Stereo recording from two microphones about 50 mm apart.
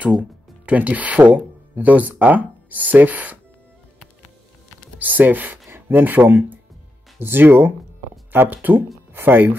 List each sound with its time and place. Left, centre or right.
0.7 s speech: right
4.9 s speech: right